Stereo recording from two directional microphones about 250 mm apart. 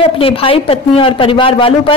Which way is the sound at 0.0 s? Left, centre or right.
Left.